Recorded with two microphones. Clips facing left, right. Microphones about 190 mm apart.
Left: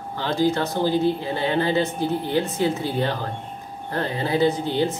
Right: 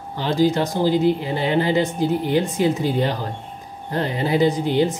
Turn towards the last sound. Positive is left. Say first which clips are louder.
# right 3 dB
turn(degrees=-15)  # may be behind; listen again after turning